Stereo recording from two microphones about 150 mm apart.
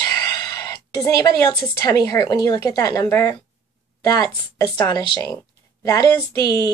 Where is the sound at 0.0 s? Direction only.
25° left (ahead or behind).